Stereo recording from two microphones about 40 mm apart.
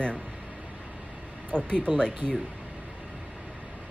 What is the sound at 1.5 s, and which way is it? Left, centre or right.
Speech, left.